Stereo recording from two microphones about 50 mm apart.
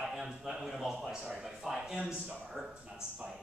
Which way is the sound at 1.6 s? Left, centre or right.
Centre.